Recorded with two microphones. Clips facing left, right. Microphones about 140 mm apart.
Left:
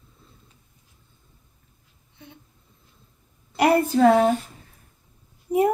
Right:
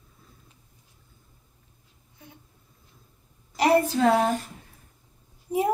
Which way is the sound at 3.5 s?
55° left (ahead or behind).